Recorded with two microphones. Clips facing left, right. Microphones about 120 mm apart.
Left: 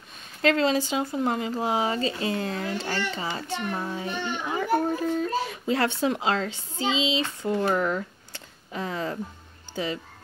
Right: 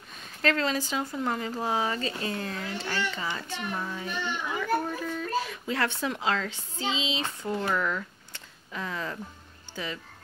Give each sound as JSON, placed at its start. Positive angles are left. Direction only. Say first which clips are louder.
{"t": 0.4, "sound": "speech", "louder": "left 5 dB", "side_deg": 25}
{"t": 2.5, "sound": "a child's voice", "louder": "left 4 dB", "side_deg": 35}